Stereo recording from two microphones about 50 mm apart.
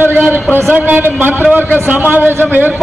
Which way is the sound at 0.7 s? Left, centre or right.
Right.